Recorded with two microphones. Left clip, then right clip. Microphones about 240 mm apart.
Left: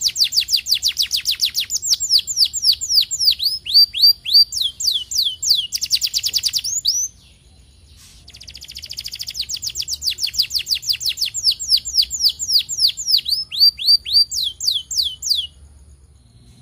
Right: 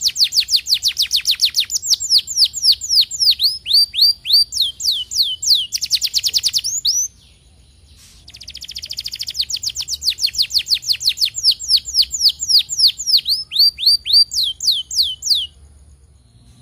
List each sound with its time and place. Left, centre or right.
0.0 s chirp: centre
2.6 s bird: centre
8.3 s bird: centre